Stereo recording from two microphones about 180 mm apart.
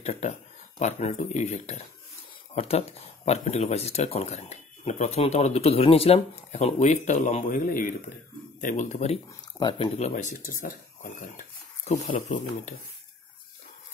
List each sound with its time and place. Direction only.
0.0 s speech: 40° left (ahead or behind)
9.8 s speech: 40° left (ahead or behind)